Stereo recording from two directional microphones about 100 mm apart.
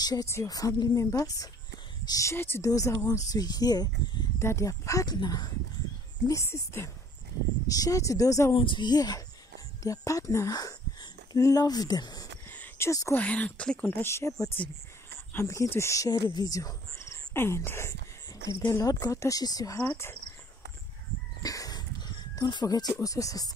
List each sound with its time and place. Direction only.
0.0 s speech: 40° left (ahead or behind)
2.3 s speech: 20° left (ahead or behind)
2.7 s speech: 35° left (ahead or behind)
4.4 s speech: 30° left (ahead or behind); by 5.5 s 45° left (ahead or behind)
6.2 s speech: 30° left (ahead or behind)
7.6 s speech: 35° left (ahead or behind)
8.5 s speech: 55° left (ahead or behind)
12.4 s a sound: 20° left (ahead or behind)
13.1 s speech: 15° left (ahead or behind); by 19.8 s 40° left (ahead or behind)
19.8 s speech: 25° left (ahead or behind)
21.4 s a sound: 40° left (ahead or behind)
22.9 s speech: 35° left (ahead or behind)